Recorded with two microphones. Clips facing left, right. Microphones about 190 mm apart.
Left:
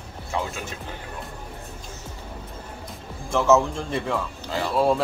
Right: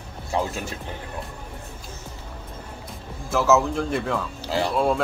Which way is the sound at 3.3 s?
5° right (ahead or behind).